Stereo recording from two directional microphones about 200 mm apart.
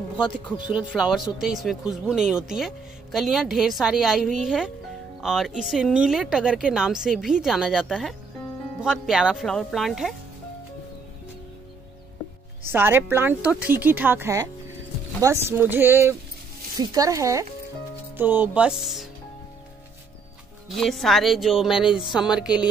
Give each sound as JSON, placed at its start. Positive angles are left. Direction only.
{"t": 0.7, "sound": "speech", "side_deg": -5}
{"t": 12.6, "sound": "a woman's voice", "side_deg": -10}
{"t": 20.6, "sound": "speech", "side_deg": 0}